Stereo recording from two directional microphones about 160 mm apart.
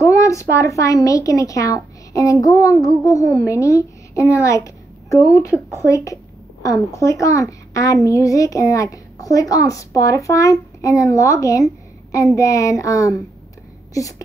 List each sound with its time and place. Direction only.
0.0 s a woman's voice: 20° left (ahead or behind)